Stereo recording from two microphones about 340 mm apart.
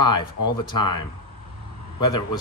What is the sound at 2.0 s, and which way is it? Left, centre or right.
Speech, centre.